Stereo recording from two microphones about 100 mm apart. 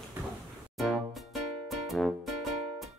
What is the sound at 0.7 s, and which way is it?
Music, centre (ahead or behind).